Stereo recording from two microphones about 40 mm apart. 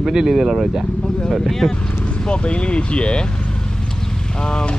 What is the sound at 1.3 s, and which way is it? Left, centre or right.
Speech, centre.